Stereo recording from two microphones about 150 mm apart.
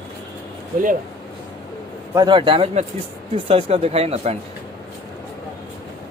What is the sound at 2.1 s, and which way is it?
A man's voice, 30° right (ahead or behind).